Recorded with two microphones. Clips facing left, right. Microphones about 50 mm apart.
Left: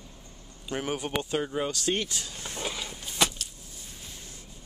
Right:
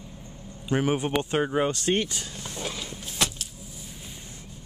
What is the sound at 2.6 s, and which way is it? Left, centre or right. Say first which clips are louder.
Vehicle: even; centre.